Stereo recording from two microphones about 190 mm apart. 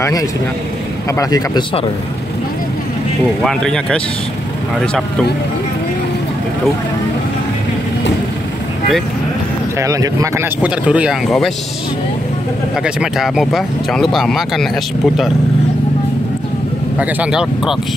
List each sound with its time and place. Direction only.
1.1 s speech: 20° left (ahead or behind)
3.4 s speech: 5° left (ahead or behind)
9.8 s speech: 15° right (ahead or behind); by 11.5 s centre (ahead or behind)
12.8 s speech: 5° right (ahead or behind)
17.0 s speech: 5° right (ahead or behind)